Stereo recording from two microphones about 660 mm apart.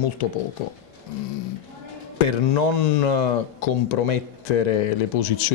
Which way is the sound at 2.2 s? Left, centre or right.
Left.